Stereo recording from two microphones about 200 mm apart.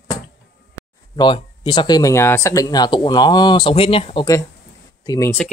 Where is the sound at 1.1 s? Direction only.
25° left (ahead or behind).